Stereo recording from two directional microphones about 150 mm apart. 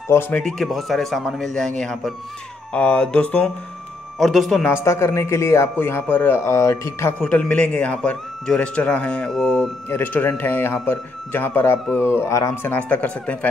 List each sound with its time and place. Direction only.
0.1 s speech: 15° left (ahead or behind)
0.4 s speech: 5° left (ahead or behind)
4.8 s speech: 20° left (ahead or behind)
12.7 s speech: 10° left (ahead or behind)